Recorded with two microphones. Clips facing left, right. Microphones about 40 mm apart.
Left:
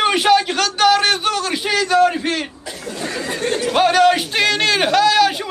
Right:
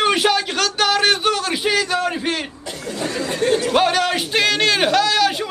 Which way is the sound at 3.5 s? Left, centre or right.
Centre.